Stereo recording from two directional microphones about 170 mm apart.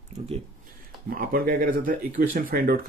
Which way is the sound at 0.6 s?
55° right (ahead or behind).